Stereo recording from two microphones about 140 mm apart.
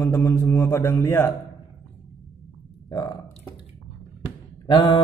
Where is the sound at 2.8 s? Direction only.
30° left (ahead or behind).